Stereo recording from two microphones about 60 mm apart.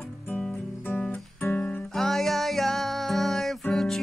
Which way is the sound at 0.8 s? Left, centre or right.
Left.